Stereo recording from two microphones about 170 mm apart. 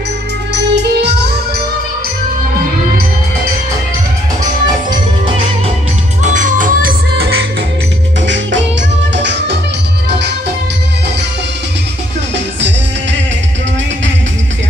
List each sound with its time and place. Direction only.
0.5 s music: 90° right
6.2 s music: 50° right (ahead or behind); by 7.4 s 70° right (ahead or behind)
8.3 s music: 90° right